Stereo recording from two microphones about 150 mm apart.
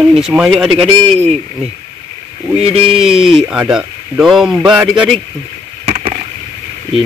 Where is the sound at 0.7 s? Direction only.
40° right (ahead or behind).